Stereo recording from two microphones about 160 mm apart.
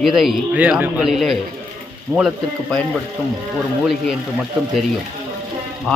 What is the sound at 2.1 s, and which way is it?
Speech, 20° right (ahead or behind).